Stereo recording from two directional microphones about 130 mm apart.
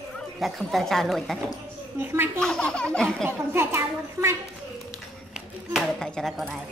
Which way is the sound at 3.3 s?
20° right (ahead or behind).